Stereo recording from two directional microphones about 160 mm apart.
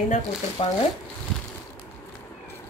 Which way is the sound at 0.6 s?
35° left (ahead or behind).